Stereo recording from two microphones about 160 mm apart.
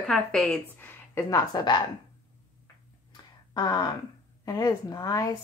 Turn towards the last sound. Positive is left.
turn(degrees=25)  # may be behind; listen again after turning